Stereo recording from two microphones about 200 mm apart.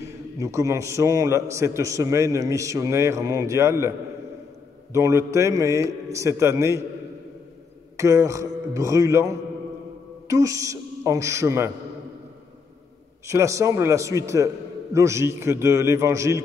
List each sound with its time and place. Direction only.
0.4 s a man's voice: 15° right (ahead or behind)
4.9 s a man's voice: 15° right (ahead or behind)
8.0 s a man's voice: 15° right (ahead or behind)
13.3 s a man's voice: 15° right (ahead or behind)